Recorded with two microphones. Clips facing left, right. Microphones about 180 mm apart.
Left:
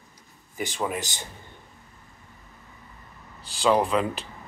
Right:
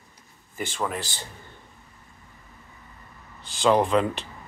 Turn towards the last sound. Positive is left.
turn(degrees=5)  # may be behind; listen again after turning